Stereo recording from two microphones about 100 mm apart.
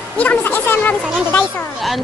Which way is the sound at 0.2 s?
15° left (ahead or behind).